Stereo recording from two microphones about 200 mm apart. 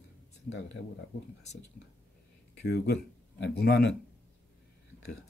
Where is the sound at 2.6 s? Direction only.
55° left (ahead or behind).